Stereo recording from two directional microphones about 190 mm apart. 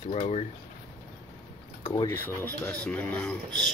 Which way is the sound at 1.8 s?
25° left (ahead or behind).